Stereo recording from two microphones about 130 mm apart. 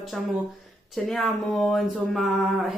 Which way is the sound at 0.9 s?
Centre (ahead or behind).